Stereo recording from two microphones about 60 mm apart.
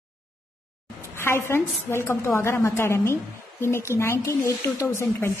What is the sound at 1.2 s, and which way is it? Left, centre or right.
A woman's voice, left.